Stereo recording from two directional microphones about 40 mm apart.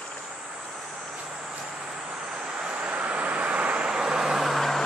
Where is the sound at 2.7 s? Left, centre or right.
Right.